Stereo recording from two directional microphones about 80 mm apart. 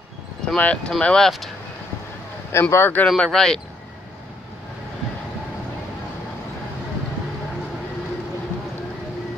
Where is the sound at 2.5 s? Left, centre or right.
Left.